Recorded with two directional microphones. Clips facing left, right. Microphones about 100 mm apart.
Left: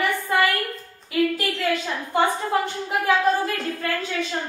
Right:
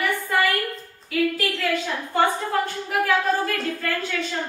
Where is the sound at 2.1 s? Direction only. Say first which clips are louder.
Left 1 dB; 20° left (ahead or behind).